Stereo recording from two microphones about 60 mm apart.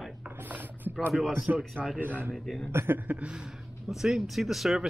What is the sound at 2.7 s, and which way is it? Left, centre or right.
Speech, right.